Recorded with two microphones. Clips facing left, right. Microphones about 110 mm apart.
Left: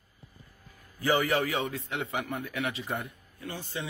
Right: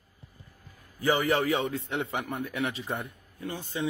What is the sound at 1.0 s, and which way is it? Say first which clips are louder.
Speech: right 1 dB; 25° right (ahead or behind).